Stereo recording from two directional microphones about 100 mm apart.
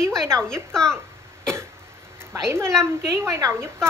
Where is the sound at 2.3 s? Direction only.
30° right (ahead or behind).